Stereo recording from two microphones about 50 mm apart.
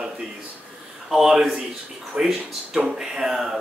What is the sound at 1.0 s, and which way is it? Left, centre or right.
Speech, centre.